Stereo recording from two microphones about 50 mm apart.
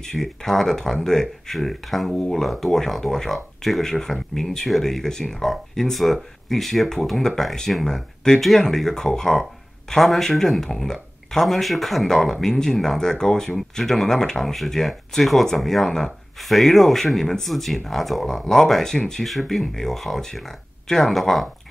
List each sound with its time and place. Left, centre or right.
0.0 s speech: centre
2.1 s speech: centre
2.4 s speech: centre